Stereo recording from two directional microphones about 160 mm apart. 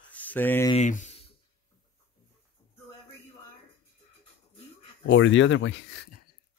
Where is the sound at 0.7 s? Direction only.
50° left (ahead or behind).